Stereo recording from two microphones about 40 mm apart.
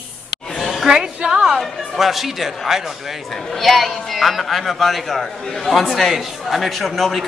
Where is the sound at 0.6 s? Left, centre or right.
Centre.